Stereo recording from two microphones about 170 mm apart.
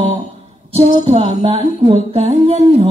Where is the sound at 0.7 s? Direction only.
35° right (ahead or behind).